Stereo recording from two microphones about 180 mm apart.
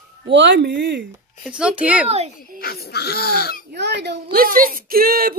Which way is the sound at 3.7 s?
70° right (ahead or behind).